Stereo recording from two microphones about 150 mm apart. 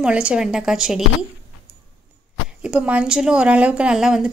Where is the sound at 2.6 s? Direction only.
10° right (ahead or behind).